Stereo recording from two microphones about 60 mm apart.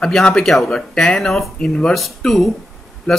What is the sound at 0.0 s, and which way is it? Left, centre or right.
Speech, centre.